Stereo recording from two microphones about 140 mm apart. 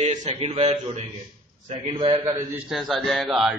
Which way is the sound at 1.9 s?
35° right (ahead or behind).